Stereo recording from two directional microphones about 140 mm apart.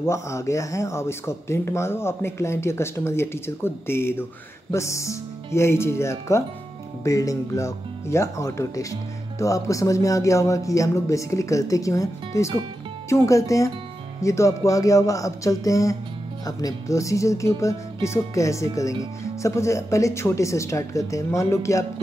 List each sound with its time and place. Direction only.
0.0 s speech: 20° left (ahead or behind)